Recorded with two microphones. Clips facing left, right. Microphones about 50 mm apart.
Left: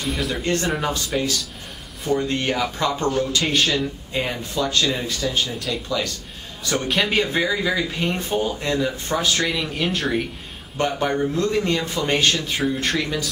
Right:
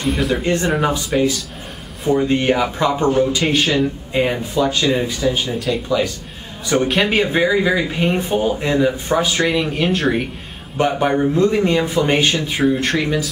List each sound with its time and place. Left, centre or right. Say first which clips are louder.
0.0 s a man's voice: right 6 dB; centre
6.9 s speech: even; centre
7.2 s a man's voice: right 6 dB; centre
9.5 s speech: right 6 dB; centre
10.8 s a man's voice: right 5 dB; centre